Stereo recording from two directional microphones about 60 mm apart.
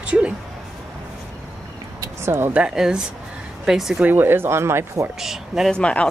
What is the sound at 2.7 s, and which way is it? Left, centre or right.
Speech, centre.